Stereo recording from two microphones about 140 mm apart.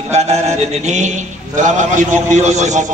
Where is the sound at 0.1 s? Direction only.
50° right (ahead or behind).